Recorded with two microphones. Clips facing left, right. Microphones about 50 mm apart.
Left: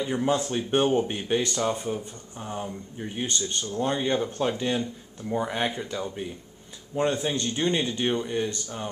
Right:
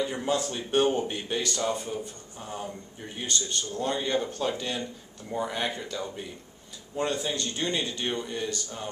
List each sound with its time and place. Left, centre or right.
0.0 s speech: centre